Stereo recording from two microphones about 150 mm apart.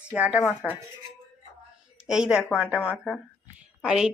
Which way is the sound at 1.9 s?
5° right (ahead or behind).